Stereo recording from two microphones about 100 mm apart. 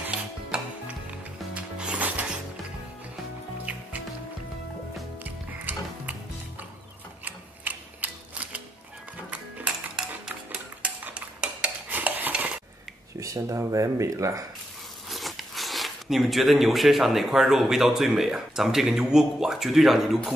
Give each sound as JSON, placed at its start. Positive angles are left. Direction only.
{"t": 0.0, "sound": "music", "side_deg": -15}
{"t": 5.2, "sound": "music", "side_deg": -15}
{"t": 7.2, "sound": "mechanisms", "side_deg": -15}
{"t": 9.9, "sound": "stir", "side_deg": -10}
{"t": 13.2, "sound": "speech", "side_deg": -30}
{"t": 15.0, "sound": "speech", "side_deg": 0}